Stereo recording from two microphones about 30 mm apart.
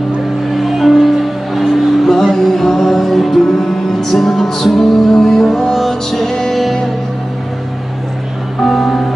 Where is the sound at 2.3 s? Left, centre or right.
Centre.